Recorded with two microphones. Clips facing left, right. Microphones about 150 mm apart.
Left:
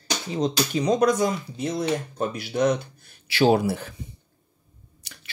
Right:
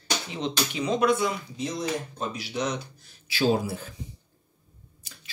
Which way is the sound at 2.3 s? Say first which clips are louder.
Left 8 dB; 55° left (ahead or behind).